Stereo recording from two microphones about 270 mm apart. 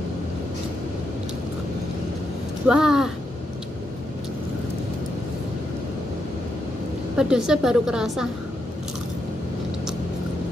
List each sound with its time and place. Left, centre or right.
2.7 s speech: centre
7.2 s a woman's voice: centre